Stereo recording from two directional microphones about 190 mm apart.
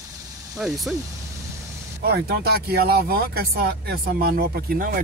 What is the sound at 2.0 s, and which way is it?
Speech, 55° right (ahead or behind).